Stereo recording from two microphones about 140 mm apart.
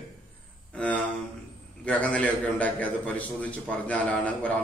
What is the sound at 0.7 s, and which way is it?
A man's voice, 10° left (ahead or behind).